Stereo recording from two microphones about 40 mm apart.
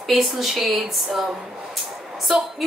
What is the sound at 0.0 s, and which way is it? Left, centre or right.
A woman's voice, centre.